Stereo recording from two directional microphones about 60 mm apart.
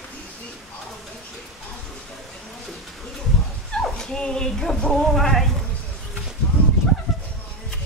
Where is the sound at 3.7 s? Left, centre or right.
Centre.